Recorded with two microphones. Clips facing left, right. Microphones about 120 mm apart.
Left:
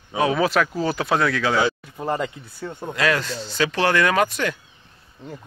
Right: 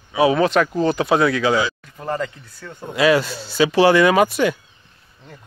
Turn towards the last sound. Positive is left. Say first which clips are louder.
# right 5 dB
turn(degrees=-10)  # may be behind; listen again after turning